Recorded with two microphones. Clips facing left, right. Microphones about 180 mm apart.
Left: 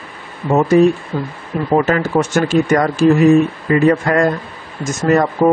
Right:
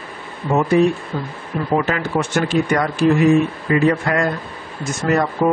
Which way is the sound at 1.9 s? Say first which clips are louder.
Left 5 dB; 45° left (ahead or behind).